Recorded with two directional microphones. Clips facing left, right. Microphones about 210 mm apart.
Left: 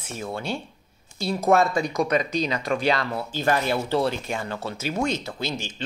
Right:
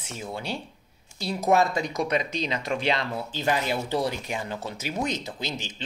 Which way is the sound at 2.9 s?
20° right (ahead or behind).